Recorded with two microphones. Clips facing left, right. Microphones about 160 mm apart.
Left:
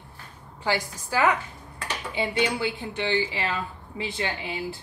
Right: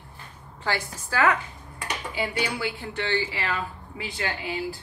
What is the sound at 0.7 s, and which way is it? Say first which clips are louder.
A woman's voice: left 2 dB; 15° left (ahead or behind).